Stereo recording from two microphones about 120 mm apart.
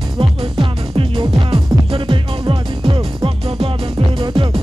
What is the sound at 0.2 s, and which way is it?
Music, 50° right (ahead or behind).